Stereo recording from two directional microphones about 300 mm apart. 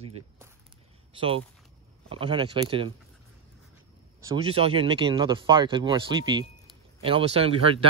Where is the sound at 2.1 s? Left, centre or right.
Centre.